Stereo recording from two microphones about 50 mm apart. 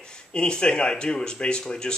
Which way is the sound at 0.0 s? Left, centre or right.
Centre.